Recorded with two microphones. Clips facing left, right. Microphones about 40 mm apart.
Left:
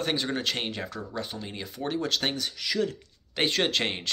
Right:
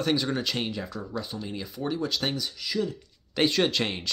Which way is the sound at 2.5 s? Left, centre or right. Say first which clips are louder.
Left 1 dB; left.